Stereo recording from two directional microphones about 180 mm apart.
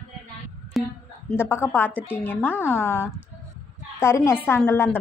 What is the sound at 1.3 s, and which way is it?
A woman's voice, 15° left (ahead or behind).